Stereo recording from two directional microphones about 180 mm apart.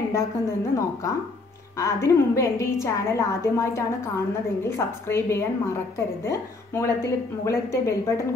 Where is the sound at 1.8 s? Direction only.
15° left (ahead or behind).